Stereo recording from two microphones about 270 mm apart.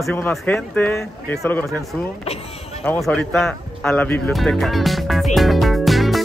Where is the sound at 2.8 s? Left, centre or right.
Centre.